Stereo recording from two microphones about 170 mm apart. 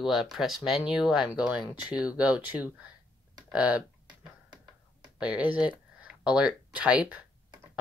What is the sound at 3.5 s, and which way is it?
Typing, 5° right (ahead or behind).